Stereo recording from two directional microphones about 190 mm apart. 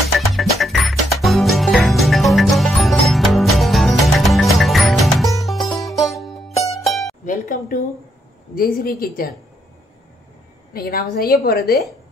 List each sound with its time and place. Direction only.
0.3 s music: centre (ahead or behind)
7.2 s music: 45° left (ahead or behind)
8.5 s speech: 50° left (ahead or behind)
10.7 s a woman's voice: 50° left (ahead or behind)